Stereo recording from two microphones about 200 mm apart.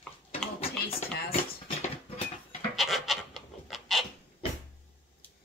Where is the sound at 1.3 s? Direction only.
30° left (ahead or behind).